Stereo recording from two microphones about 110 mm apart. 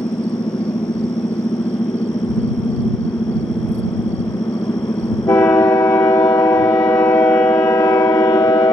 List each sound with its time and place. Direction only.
5.3 s train: 30° left (ahead or behind)